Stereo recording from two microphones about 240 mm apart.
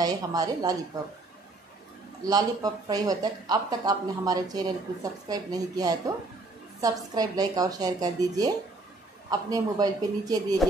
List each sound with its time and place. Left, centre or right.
0.0 s speech: centre
2.2 s speech: centre
10.6 s a sound: centre